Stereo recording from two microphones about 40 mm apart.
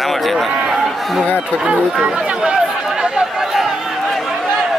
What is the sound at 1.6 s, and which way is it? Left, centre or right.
Speech, right.